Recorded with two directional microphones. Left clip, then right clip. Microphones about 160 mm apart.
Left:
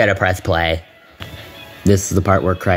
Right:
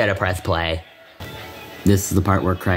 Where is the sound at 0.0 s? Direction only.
15° left (ahead or behind).